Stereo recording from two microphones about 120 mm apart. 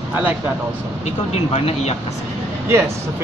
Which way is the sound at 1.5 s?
60° left (ahead or behind).